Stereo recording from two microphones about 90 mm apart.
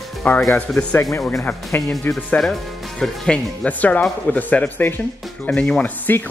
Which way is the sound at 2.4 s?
5° left (ahead or behind).